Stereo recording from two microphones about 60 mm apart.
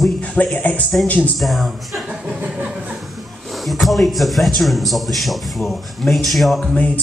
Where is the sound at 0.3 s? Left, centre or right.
Left.